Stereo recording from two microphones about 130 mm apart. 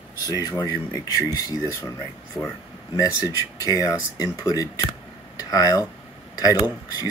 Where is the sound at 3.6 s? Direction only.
25° left (ahead or behind).